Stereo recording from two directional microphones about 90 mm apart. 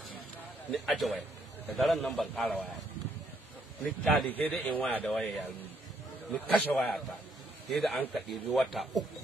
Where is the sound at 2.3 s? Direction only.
15° left (ahead or behind).